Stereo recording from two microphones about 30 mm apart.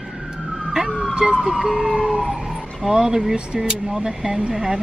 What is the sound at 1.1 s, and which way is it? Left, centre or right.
Emergency vehicle, right.